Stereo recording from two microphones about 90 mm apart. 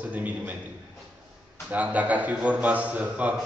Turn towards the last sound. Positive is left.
turn(degrees=-15)  # may be behind; listen again after turning